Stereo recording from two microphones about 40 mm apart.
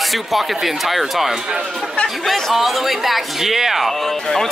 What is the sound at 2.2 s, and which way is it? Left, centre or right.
Speech, centre.